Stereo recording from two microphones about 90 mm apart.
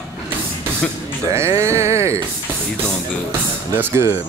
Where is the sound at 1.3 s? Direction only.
30° right (ahead or behind).